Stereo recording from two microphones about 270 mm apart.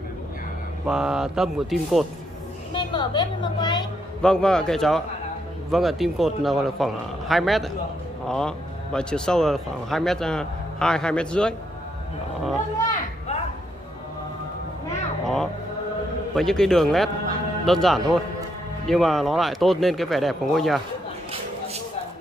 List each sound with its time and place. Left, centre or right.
0.8 s a man's voice: centre
2.7 s a woman's voice: centre
4.2 s a man's voice: centre
15.2 s music: centre
16.3 s a man's voice: centre